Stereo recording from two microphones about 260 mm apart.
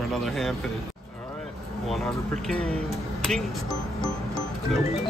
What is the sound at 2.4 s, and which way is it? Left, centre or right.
Speech, centre.